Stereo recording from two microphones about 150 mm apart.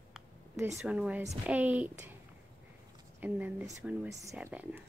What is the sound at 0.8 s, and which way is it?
Speech, 10° right (ahead or behind).